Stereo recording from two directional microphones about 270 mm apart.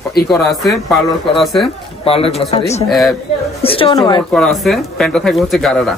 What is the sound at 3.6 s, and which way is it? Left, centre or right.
Speech, centre.